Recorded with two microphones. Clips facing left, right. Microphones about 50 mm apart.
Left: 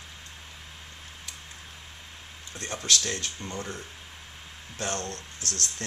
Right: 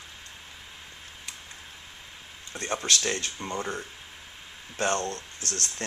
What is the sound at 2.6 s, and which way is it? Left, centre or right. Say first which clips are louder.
Speech: right 2 dB; right.